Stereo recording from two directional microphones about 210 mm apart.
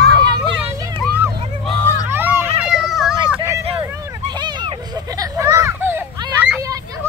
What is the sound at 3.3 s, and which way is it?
Vehicle, 15° right (ahead or behind).